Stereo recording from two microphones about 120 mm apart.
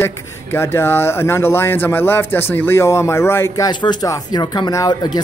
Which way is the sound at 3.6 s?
35° left (ahead or behind).